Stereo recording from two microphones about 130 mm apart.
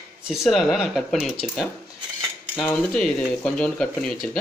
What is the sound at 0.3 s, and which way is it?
Speech, centre (ahead or behind).